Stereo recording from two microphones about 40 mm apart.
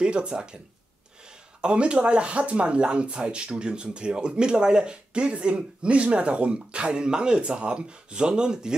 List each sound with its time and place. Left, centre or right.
0.0 s speech: right
1.6 s speech: right